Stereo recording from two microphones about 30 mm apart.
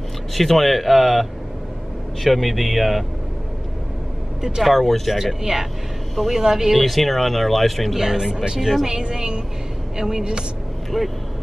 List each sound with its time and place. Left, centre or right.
0.3 s speech: centre
2.2 s speech: centre
4.4 s speech: centre
4.6 s speech: centre
5.1 s speech: centre
6.8 s speech: centre
8.0 s speech: centre
8.5 s speech: centre
8.8 s a woman's voice: right
10.9 s speech: centre